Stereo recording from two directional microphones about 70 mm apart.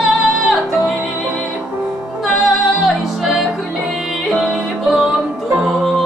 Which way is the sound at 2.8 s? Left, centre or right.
Centre.